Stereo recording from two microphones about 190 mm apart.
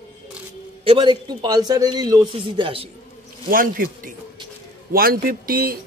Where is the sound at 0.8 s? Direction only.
30° right (ahead or behind).